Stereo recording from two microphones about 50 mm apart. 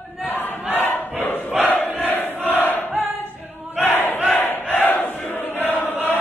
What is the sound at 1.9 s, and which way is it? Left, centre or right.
Crowd, left.